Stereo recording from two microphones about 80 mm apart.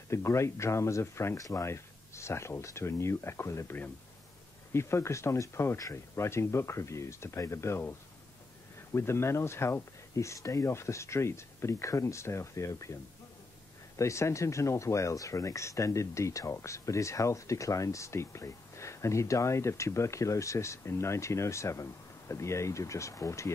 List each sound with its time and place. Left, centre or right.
0.1 s speech: left
4.7 s speech: left
8.9 s speech: left
13.9 s speech: left